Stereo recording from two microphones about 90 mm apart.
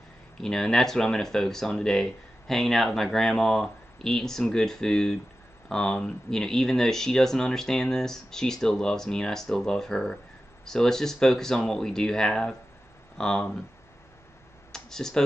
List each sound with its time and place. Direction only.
0.4 s speech: 5° left (ahead or behind)
14.7 s computer keyboard: 5° left (ahead or behind)